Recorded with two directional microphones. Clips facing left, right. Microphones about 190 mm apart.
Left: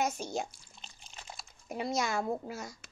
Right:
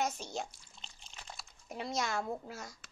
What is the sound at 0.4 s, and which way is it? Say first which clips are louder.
Drip: left 4 dB; 10° left (ahead or behind).